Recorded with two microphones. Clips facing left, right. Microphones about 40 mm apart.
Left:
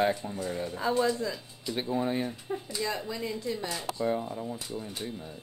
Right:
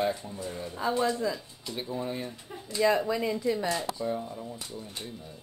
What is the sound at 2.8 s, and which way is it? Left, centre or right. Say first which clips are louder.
Speech: right 10 dB; right.